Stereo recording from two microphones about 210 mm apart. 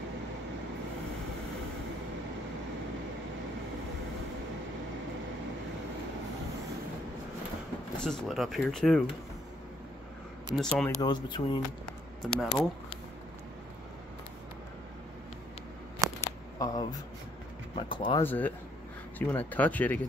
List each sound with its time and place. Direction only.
8.0 s speech: centre (ahead or behind)
10.5 s speech: 5° left (ahead or behind)
11.0 s speech: 20° left (ahead or behind)
12.2 s speech: centre (ahead or behind)
16.2 s a sound: 15° left (ahead or behind)
17.7 s speech: 20° left (ahead or behind)
18.2 s speech: 10° left (ahead or behind)